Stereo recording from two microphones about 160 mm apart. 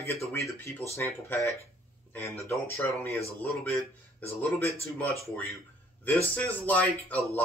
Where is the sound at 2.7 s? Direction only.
15° left (ahead or behind).